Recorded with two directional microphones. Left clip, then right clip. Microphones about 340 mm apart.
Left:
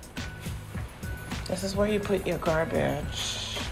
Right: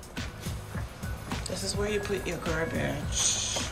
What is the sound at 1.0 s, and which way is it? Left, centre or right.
Speech, centre.